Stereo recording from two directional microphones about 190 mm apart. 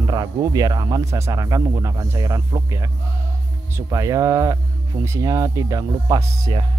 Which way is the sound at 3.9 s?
15° right (ahead or behind).